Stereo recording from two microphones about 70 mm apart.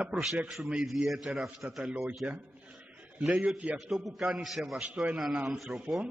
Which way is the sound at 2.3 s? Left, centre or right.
Centre.